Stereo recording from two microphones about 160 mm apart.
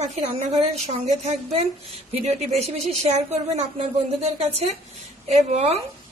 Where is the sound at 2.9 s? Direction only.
45° right (ahead or behind).